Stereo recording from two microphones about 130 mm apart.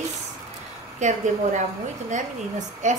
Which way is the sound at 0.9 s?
70° right (ahead or behind).